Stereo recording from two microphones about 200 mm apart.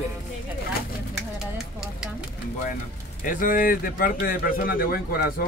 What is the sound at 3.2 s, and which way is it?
A man's voice, 45° left (ahead or behind).